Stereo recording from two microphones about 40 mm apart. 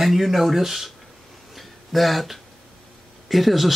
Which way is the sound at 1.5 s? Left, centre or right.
Centre.